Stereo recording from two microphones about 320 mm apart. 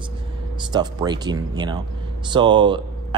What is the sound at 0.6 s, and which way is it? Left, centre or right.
Speech, centre.